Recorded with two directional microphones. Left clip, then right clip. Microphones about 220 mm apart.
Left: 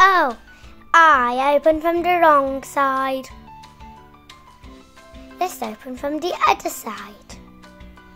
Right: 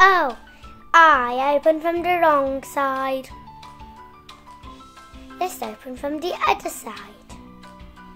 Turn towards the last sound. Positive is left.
turn(degrees=20)  # may be behind; listen again after turning